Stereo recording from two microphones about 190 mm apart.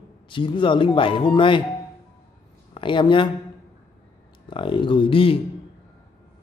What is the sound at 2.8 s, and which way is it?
Speech, 25° left (ahead or behind).